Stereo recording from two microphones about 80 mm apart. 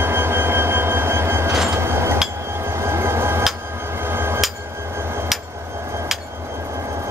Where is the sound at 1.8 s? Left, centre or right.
Right.